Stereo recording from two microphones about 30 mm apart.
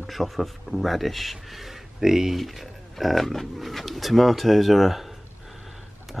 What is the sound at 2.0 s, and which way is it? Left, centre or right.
Speech, centre.